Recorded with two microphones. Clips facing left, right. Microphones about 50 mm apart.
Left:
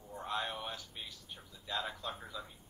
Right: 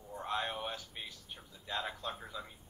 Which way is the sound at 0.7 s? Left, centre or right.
Right.